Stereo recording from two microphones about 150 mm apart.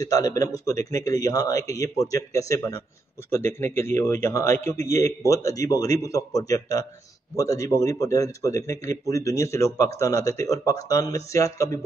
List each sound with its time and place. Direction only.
0.0 s speech: 25° left (ahead or behind)